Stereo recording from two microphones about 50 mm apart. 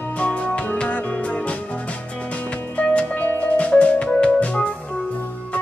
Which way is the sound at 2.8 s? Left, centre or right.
Left.